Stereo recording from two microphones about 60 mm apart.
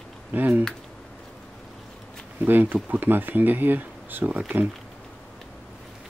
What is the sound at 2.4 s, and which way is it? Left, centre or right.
Speech, right.